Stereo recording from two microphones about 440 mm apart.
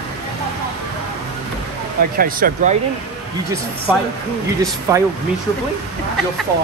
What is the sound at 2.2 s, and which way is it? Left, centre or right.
Speech, centre.